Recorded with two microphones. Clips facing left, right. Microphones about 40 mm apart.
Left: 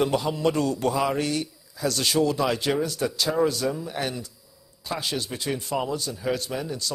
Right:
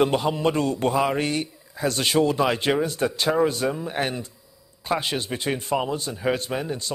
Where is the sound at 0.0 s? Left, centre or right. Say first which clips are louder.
Right 2 dB; right.